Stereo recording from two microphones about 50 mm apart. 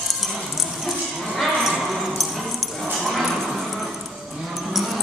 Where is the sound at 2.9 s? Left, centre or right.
Centre.